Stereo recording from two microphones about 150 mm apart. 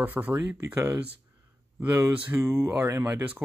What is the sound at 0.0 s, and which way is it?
Speech, 10° right (ahead or behind).